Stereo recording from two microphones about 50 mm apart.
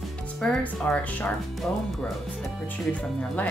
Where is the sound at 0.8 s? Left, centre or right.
Left.